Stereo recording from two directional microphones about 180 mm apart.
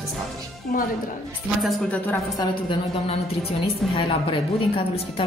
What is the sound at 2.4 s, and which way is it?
A woman's voice, 25° left (ahead or behind).